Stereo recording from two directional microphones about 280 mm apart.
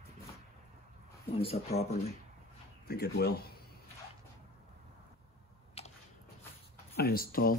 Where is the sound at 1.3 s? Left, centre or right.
Left.